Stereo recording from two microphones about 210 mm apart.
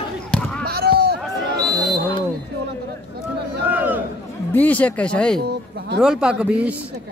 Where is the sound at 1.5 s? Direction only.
20° right (ahead or behind).